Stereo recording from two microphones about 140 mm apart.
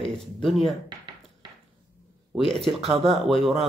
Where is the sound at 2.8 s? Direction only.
45° right (ahead or behind).